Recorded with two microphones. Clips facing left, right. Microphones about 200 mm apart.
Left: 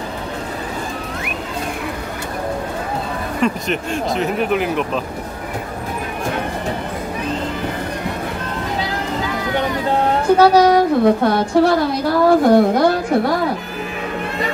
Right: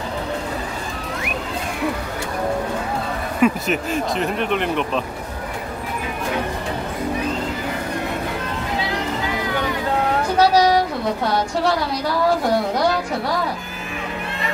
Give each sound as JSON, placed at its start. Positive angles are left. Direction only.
{"t": 3.3, "sound": "speech", "side_deg": -5}
{"t": 10.4, "sound": "a woman's voice", "side_deg": 55}